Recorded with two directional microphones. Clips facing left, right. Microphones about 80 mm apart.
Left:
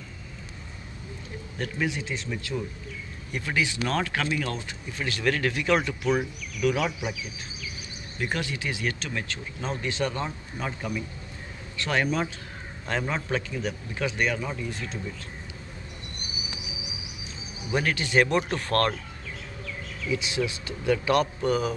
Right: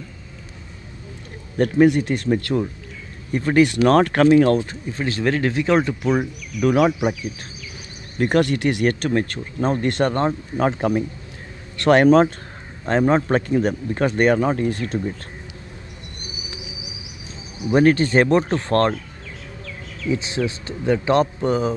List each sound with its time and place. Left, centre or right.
1.6 s speech: right
3.3 s speech: right
3.5 s speech: right
4.6 s speech: right
6.7 s speech: right
12.8 s speech: right
13.3 s speech: right
17.7 s speech: right
20.1 s speech: right